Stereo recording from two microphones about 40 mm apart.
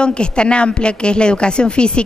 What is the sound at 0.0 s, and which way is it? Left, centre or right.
A woman's voice, left.